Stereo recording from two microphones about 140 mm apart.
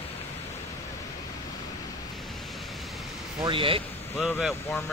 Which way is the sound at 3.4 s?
40° right (ahead or behind).